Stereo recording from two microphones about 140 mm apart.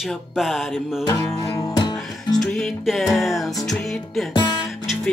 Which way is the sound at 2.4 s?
Centre (ahead or behind).